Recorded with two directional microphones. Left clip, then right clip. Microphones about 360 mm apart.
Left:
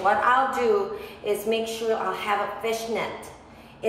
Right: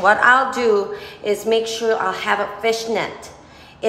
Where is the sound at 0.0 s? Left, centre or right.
Right.